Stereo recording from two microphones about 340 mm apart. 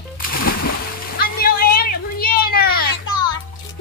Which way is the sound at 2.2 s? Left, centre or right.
Left.